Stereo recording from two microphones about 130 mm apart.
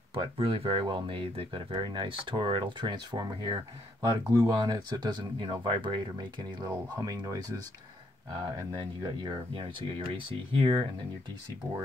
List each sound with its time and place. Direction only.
0.1 s speech: 45° right (ahead or behind); by 7.3 s 25° right (ahead or behind)
9.0 s speech: 35° right (ahead or behind)